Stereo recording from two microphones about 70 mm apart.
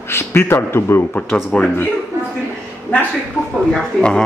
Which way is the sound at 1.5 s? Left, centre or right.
Centre.